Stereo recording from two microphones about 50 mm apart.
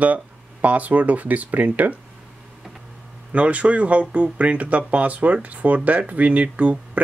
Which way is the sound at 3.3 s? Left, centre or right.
Right.